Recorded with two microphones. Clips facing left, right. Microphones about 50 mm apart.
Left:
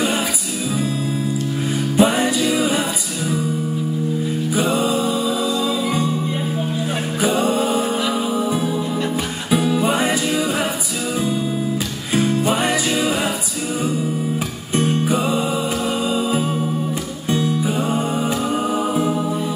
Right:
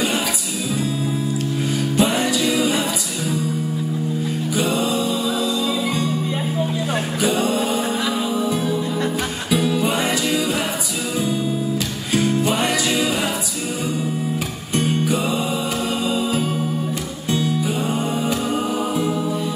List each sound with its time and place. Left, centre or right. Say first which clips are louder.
2.0 s music: left 3 dB; centre
4.6 s music: left 2 dB; centre
8.5 s music: left 1 dB; centre
12.1 s music: left 1 dB; centre
15.0 s music: left 2 dB; centre
17.6 s music: left 2 dB; centre